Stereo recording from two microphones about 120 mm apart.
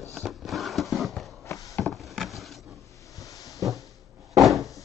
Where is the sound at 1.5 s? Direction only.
25° left (ahead or behind).